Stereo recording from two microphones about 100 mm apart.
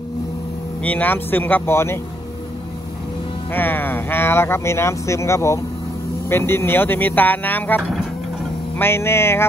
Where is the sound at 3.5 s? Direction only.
20° left (ahead or behind).